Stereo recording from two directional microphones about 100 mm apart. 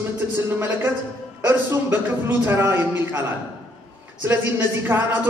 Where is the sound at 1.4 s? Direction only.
20° right (ahead or behind).